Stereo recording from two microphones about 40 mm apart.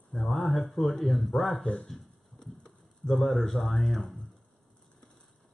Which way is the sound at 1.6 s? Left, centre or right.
Left.